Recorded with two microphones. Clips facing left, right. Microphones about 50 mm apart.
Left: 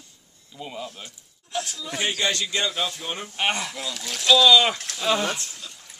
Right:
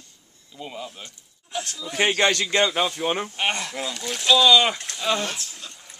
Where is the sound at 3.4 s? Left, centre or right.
Centre.